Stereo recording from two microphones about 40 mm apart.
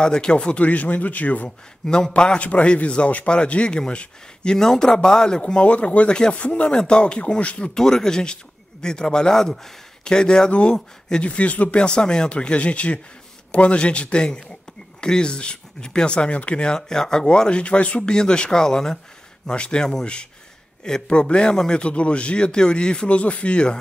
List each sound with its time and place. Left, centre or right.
0.0 s speech: left
2.1 s speech: left
5.6 s speech: left
6.7 s speech: centre
7.0 s speech: left
7.7 s speech: centre
17.5 s speech: left
18.1 s speech: left
19.4 s speech: left